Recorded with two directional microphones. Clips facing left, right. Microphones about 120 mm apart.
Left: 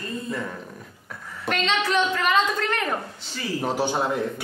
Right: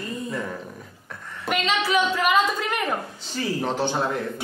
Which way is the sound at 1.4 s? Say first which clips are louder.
Even; 5° right (ahead or behind).